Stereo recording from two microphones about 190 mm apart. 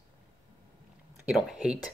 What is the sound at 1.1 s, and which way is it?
Speech, 5° right (ahead or behind).